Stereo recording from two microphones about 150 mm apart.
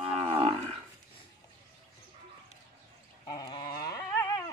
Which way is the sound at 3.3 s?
30° left (ahead or behind).